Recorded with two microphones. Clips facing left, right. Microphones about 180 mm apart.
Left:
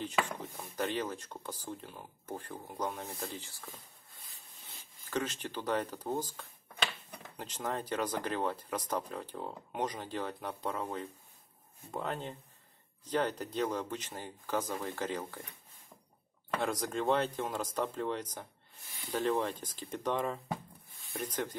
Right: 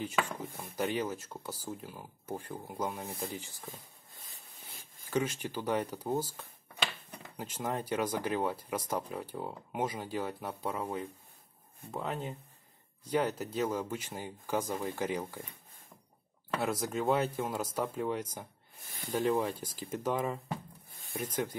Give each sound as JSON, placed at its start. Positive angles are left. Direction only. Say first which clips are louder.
{"t": 0.7, "sound": "speech", "louder": "right 2 dB", "side_deg": -10}
{"t": 4.7, "sound": "a sound", "louder": "right 2 dB", "side_deg": -50}
{"t": 5.1, "sound": "speech", "louder": "right 3 dB", "side_deg": -10}
{"t": 16.4, "sound": "speech", "louder": "right 1 dB", "side_deg": -5}
{"t": 18.9, "sound": "speech", "louder": "right 4 dB", "side_deg": -50}
{"t": 19.1, "sound": "speech", "louder": "right 2 dB", "side_deg": -10}